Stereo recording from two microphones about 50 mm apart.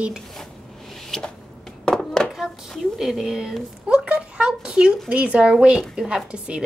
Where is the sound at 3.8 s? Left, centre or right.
Centre.